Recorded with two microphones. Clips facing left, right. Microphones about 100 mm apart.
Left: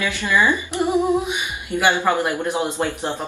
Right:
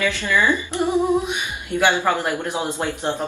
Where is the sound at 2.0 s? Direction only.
20° left (ahead or behind).